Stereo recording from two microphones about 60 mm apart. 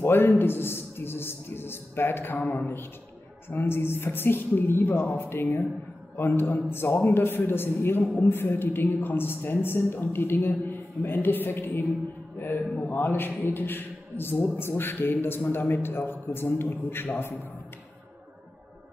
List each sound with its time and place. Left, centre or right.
0.0 s a man's voice: left